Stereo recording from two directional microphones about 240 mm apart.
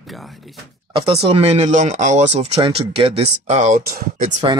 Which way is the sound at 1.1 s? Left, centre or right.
Right.